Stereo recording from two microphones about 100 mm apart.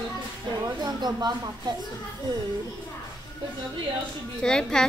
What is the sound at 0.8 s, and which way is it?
Speech, 45° right (ahead or behind).